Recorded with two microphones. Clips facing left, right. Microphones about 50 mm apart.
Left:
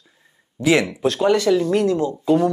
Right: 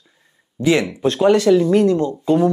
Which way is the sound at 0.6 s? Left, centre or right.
Centre.